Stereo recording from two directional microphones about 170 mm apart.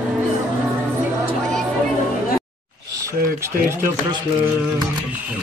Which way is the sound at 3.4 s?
15° right (ahead or behind).